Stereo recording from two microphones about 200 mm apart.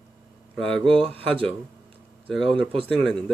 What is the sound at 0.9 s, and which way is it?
Speech, 25° right (ahead or behind).